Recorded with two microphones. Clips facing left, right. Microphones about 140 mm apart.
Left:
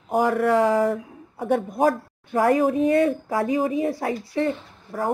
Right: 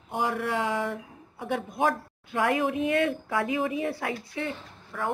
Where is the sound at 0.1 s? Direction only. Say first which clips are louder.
Left 9 dB; 45° left (ahead or behind).